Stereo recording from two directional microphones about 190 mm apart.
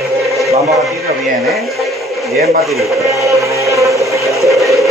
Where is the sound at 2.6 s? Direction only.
Centre (ahead or behind).